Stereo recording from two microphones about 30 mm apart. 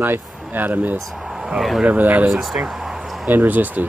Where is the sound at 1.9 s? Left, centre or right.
Right.